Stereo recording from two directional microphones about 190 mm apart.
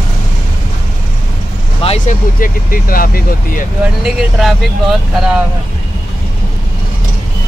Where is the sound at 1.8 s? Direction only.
40° left (ahead or behind).